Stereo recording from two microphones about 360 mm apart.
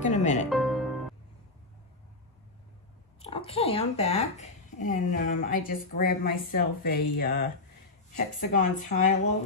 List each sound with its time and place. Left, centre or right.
0.0 s music: centre
0.5 s music: centre
3.2 s speech: centre
8.5 s speech: left